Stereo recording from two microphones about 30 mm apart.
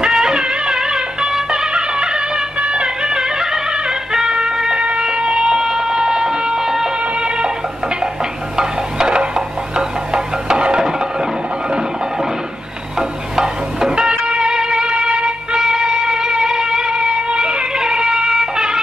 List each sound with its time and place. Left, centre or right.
0.1 s music: right
4.7 s a sound: right; by 6.9 s centre
7.2 s music: right
8.5 s a sound: right
9.8 s music: right
13.4 s stir: centre
13.9 s music: right